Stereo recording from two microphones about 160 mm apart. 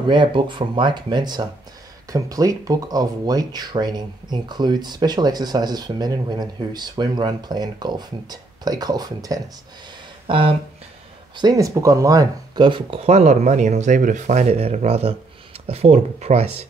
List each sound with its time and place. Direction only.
0.1 s speech: 30° right (ahead or behind)
10.2 s a sound: 35° right (ahead or behind)
11.3 s speech: 25° right (ahead or behind); by 16.6 s 40° right (ahead or behind)